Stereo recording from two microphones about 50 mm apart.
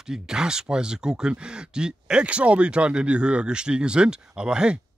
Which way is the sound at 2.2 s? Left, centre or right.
Right.